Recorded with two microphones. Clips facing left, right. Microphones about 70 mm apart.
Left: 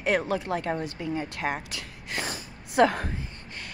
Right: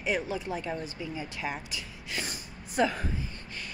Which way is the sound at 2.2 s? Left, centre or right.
Left.